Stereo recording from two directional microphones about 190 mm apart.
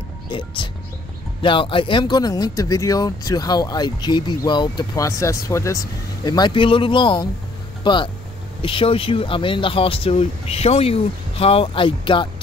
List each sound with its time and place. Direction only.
0.3 s speech: 25° left (ahead or behind)